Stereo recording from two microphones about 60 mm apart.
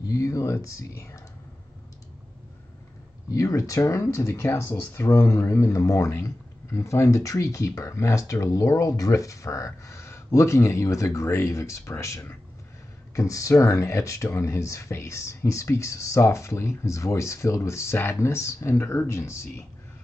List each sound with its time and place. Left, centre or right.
0.0 s speech: left
3.3 s speech: left
13.1 s speech: left